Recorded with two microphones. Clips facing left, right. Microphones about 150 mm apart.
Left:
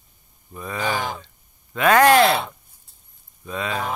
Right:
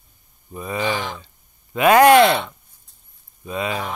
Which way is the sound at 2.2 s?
35° left (ahead or behind).